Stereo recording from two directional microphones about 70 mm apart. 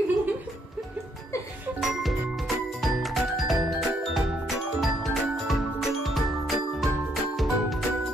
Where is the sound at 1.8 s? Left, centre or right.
Centre.